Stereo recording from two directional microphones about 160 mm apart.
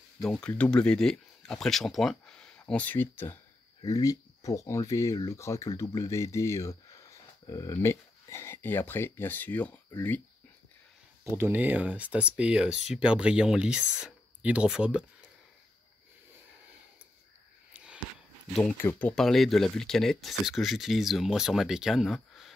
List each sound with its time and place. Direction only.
0.2 s speech: 5° left (ahead or behind)
11.2 s speech: 15° right (ahead or behind)
18.5 s speech: 5° left (ahead or behind)